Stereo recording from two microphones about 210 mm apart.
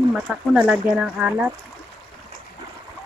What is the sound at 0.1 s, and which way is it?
Speech, centre (ahead or behind).